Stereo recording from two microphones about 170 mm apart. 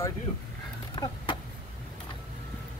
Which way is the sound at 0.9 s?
25° left (ahead or behind).